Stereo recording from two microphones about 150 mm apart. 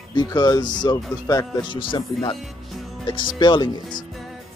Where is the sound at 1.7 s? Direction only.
35° left (ahead or behind).